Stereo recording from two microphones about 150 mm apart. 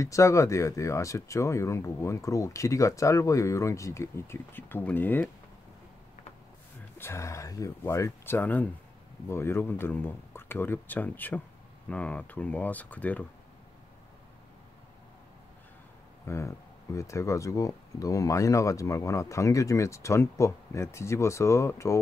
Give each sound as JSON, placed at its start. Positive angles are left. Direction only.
{"t": 0.0, "sound": "speech", "side_deg": 20}
{"t": 7.0, "sound": "speech", "side_deg": 20}
{"t": 16.3, "sound": "speech", "side_deg": 20}